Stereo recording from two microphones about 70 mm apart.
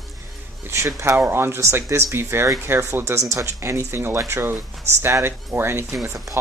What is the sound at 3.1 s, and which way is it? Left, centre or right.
Speech, right.